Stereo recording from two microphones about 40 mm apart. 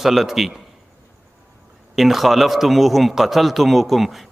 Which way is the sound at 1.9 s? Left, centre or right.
Centre.